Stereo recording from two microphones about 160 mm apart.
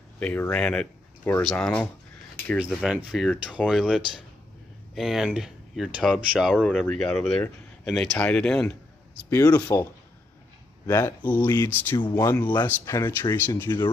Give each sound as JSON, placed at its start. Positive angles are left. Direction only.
{"t": 0.2, "sound": "speech", "side_deg": 10}
{"t": 2.6, "sound": "speech", "side_deg": -5}
{"t": 9.3, "sound": "speech", "side_deg": 20}
{"t": 10.9, "sound": "speech", "side_deg": 20}